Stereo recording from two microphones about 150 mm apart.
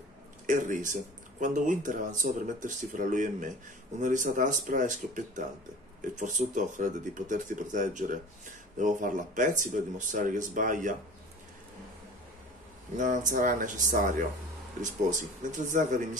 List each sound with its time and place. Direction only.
0.5 s speech: 60° right (ahead or behind)
12.9 s speech: 60° right (ahead or behind)